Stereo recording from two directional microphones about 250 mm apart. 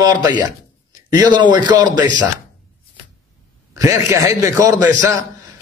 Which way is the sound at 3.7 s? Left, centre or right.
Centre.